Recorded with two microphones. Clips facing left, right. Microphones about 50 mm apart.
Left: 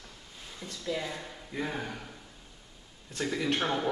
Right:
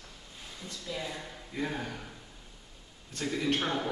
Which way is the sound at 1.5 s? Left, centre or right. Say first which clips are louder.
Even; centre.